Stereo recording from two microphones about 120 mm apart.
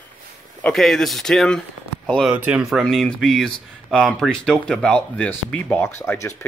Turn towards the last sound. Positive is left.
turn(degrees=25)  # may be behind; listen again after turning